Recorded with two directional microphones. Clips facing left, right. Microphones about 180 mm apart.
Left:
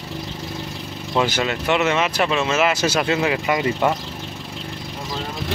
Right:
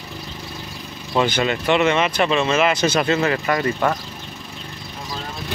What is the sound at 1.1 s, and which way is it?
Speech, 5° left (ahead or behind).